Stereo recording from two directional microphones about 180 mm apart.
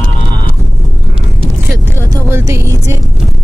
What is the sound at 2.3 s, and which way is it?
Music, 15° right (ahead or behind).